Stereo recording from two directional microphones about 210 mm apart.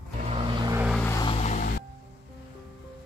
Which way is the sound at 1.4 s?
40° left (ahead or behind).